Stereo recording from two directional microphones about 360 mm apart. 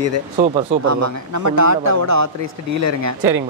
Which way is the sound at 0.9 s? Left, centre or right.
Right.